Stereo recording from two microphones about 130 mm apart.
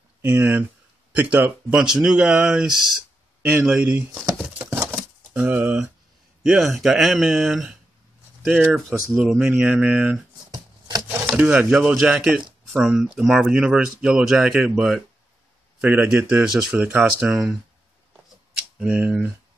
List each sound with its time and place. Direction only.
0.2 s speech: 15° right (ahead or behind)
4.8 s bird: 10° right (ahead or behind)
6.4 s speech: 5° right (ahead or behind)
8.7 s speech: 5° right (ahead or behind)
10.5 s a sound: 30° right (ahead or behind)
11.2 s speech: 10° right (ahead or behind)
18.8 s speech: 10° right (ahead or behind)